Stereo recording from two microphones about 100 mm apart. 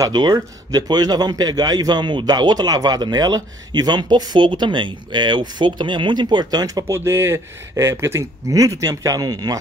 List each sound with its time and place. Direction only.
0.0 s a man's voice: 45° right (ahead or behind)
6.9 s a man's voice: 25° right (ahead or behind)